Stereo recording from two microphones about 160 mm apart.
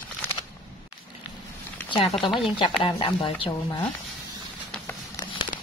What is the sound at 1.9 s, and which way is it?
Speech, 30° left (ahead or behind).